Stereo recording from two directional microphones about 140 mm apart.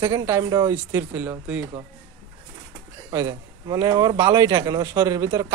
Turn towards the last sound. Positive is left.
turn(degrees=-20)  # may be behind; listen again after turning